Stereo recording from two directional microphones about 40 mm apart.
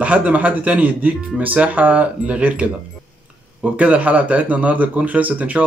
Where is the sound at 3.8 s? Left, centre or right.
Right.